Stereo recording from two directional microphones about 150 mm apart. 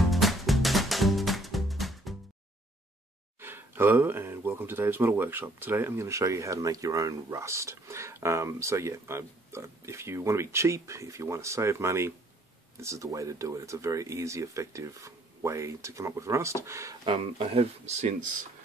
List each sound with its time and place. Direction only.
0.0 s music: centre (ahead or behind)
3.3 s speech: 15° right (ahead or behind)
17.0 s speech: 35° right (ahead or behind)